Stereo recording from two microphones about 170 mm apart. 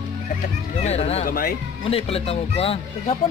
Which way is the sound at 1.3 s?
55° left (ahead or behind).